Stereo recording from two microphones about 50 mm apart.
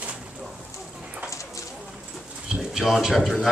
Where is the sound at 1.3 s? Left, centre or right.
Left.